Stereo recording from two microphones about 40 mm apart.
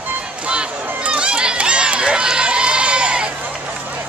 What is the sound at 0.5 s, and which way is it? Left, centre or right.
Run, right.